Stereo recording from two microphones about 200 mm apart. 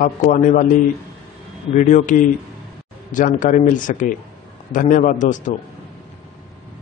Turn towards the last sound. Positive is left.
turn(degrees=40)  # may be behind; listen again after turning